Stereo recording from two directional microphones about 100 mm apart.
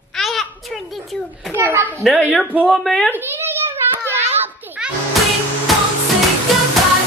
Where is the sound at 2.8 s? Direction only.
5° left (ahead or behind).